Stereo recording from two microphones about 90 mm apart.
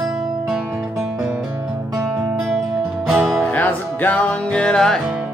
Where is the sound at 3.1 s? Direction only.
Centre (ahead or behind).